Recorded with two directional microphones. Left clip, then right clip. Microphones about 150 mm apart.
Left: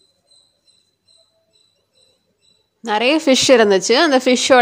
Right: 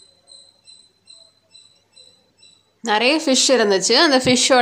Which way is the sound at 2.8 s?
35° left (ahead or behind).